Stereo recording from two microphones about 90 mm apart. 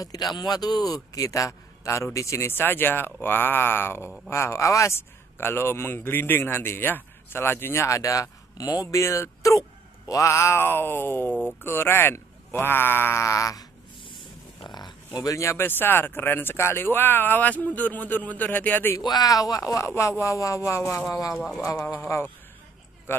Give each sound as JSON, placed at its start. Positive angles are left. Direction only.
{"t": 0.0, "sound": "a man's voice", "side_deg": 45}
{"t": 14.6, "sound": "a sound", "side_deg": 55}
{"t": 15.1, "sound": "a man's voice", "side_deg": 40}
{"t": 18.9, "sound": "a man's voice", "side_deg": 45}